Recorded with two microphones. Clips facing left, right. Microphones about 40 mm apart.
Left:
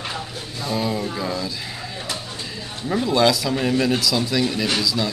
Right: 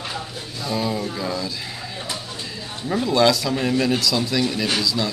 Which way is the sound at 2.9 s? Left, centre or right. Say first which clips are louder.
Even; centre.